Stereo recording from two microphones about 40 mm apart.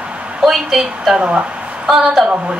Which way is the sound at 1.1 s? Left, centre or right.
Right.